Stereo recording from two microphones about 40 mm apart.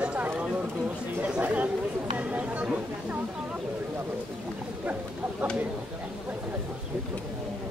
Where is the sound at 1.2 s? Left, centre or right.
Right.